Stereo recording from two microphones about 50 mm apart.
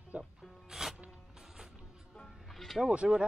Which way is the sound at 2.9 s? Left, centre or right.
Centre.